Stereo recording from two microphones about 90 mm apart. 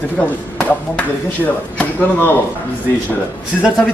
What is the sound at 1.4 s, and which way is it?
Speech, 20° left (ahead or behind).